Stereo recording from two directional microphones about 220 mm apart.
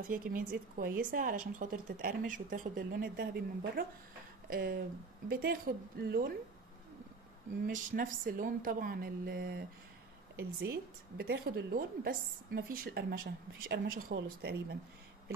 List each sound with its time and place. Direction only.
0.0 s a woman's voice: 40° right (ahead or behind)
7.6 s a woman's voice: 40° right (ahead or behind)